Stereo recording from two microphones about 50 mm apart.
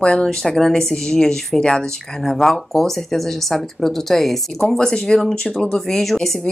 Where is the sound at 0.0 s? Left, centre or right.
Centre.